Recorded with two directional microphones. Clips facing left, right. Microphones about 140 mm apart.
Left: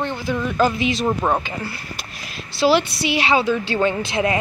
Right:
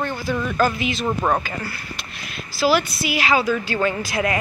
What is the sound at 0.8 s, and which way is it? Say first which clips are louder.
Speech: left 3 dB; 35° left (ahead or behind).